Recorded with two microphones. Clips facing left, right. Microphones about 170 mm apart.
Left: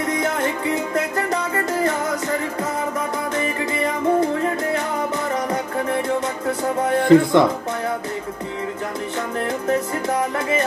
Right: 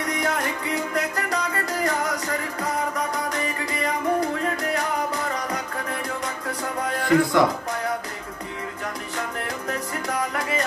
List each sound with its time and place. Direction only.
0.9 s music: 25° left (ahead or behind)
3.3 s music: 25° left (ahead or behind)
6.9 s music: 25° left (ahead or behind)
9.7 s music: 25° left (ahead or behind)